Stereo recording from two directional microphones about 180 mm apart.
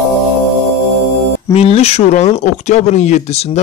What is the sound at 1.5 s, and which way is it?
Speech, 35° left (ahead or behind).